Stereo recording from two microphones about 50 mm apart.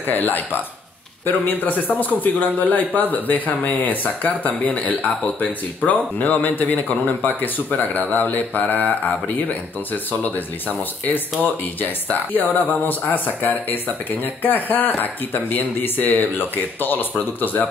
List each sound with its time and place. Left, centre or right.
0.0 s speech: left
11.8 s speech: left